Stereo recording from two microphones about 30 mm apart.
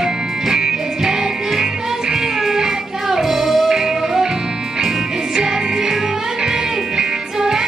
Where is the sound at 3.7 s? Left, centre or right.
Centre.